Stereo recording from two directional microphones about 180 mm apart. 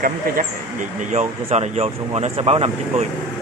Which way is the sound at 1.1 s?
35° right (ahead or behind).